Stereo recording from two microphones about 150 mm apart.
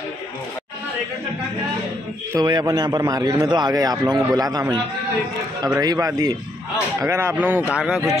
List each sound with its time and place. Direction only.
2.4 s a man's voice: 30° right (ahead or behind)
5.8 s a man's voice: 25° right (ahead or behind); by 8.1 s 5° right (ahead or behind)